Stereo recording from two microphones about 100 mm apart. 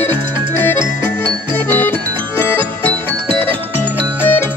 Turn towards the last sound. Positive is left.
turn(degrees=20)  # may be behind; listen again after turning